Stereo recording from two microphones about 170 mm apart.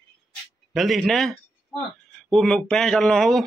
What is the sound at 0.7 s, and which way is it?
Speech, centre (ahead or behind).